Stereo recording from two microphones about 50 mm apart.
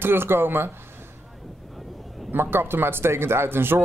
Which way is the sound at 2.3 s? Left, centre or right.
Right.